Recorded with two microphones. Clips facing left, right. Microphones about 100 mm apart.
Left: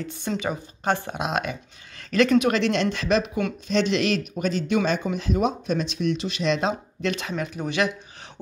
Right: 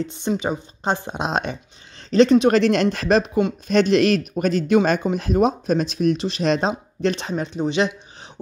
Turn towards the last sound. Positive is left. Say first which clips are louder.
# right 4 dB
turn(degrees=-25)  # may be behind; listen again after turning